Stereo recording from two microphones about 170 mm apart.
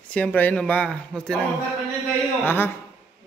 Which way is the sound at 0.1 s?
10° left (ahead or behind).